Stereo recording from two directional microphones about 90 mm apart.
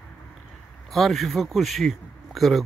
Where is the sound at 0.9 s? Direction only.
Centre (ahead or behind).